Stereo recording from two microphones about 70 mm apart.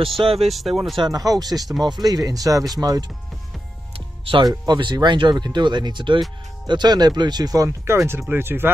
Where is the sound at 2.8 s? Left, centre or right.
Right.